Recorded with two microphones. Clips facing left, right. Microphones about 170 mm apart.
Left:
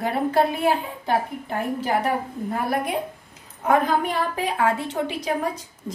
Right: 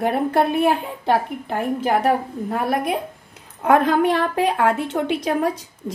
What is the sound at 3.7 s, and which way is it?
A woman's voice, 75° right (ahead or behind).